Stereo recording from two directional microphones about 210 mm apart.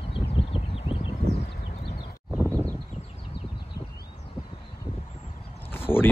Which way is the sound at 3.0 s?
25° left (ahead or behind).